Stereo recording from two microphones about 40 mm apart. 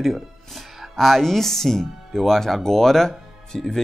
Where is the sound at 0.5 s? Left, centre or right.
Centre.